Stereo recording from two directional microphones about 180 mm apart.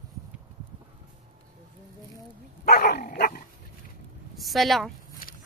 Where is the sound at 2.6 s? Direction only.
60° left (ahead or behind).